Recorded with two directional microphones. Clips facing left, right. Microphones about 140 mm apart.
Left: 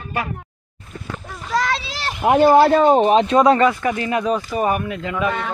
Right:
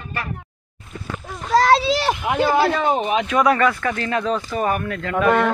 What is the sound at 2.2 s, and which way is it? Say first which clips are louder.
Speech: left 8 dB; 45° left (ahead or behind).